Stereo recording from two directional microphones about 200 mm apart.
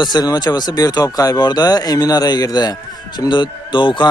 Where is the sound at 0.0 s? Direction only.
20° left (ahead or behind).